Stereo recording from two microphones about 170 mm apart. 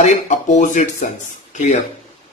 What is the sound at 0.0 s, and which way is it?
A man's voice, 45° left (ahead or behind).